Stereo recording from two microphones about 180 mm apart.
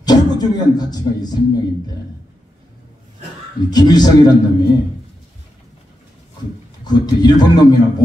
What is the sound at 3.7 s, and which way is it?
Speech, 20° left (ahead or behind).